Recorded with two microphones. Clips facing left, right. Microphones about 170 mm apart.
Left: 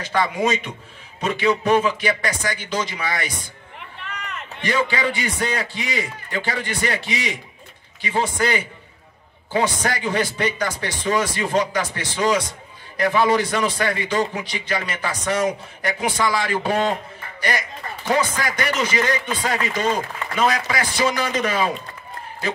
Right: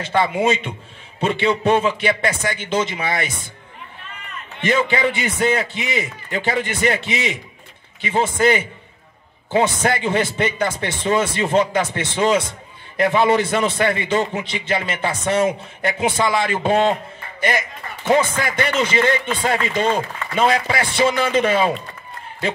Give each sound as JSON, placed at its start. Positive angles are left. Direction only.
{"t": 0.0, "sound": "a man's voice", "side_deg": -25}
{"t": 4.0, "sound": "run", "side_deg": 75}
{"t": 4.6, "sound": "a man's voice", "side_deg": -20}